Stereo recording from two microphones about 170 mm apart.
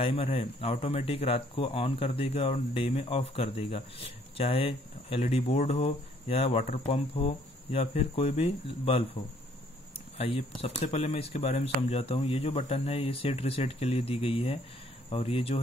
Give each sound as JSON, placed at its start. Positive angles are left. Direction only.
{"t": 0.0, "sound": "speech", "side_deg": 30}
{"t": 10.1, "sound": "speech", "side_deg": 35}